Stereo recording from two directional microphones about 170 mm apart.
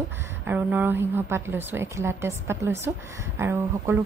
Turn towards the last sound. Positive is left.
turn(degrees=-15)  # may be behind; listen again after turning